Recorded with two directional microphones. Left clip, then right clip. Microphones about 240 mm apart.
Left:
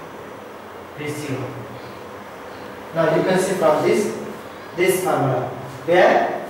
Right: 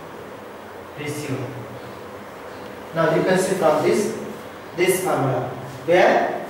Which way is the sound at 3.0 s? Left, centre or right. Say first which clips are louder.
Left 1 dB; centre.